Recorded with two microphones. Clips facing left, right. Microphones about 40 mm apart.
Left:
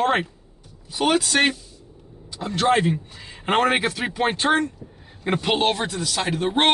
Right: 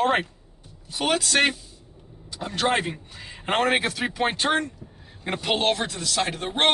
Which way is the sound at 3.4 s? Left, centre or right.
Centre.